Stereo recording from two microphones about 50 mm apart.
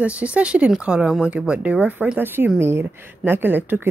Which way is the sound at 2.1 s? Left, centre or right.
Right.